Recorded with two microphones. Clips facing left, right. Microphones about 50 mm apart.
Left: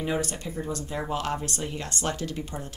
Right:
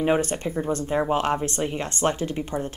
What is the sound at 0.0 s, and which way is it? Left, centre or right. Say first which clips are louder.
Speech: right 7 dB; right.